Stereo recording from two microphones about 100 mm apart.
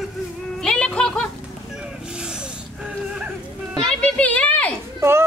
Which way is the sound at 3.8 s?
10° left (ahead or behind).